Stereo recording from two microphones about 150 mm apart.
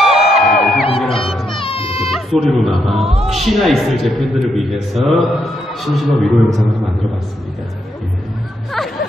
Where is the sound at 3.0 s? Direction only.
40° right (ahead or behind).